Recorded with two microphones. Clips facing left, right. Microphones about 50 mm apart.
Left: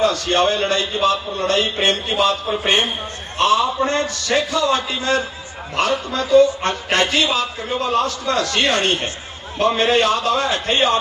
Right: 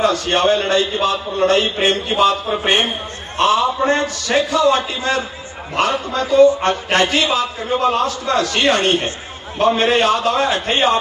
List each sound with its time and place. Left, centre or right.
0.0 s a man's voice: right